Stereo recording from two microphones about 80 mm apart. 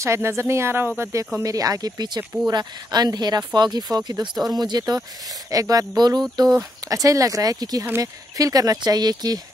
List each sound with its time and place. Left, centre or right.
0.0 s speech: right
1.4 s speech: right